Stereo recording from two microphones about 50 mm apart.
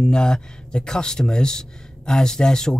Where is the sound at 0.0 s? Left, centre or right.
Centre.